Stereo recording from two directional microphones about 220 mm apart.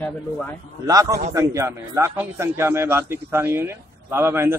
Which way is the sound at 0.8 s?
15° right (ahead or behind).